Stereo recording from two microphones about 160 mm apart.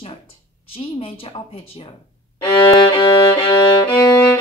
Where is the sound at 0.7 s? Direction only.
35° left (ahead or behind).